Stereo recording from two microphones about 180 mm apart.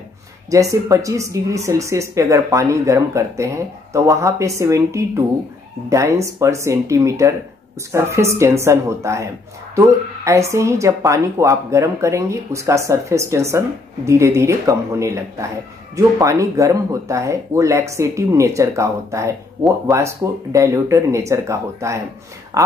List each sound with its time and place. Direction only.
0.5 s speech: 20° right (ahead or behind)